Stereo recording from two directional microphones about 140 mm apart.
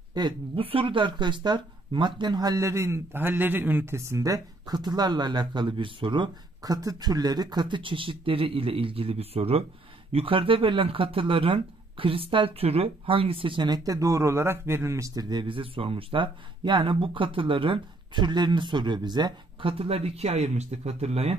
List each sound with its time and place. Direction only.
0.1 s speech: 35° right (ahead or behind)